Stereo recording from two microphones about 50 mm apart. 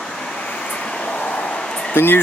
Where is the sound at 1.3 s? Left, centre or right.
Left.